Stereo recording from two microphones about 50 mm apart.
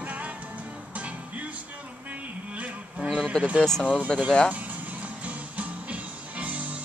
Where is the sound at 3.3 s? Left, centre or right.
Centre.